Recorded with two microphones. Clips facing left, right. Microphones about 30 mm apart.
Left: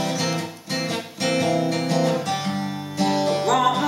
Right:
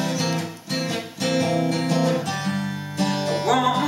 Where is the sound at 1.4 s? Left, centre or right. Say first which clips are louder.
Even; left.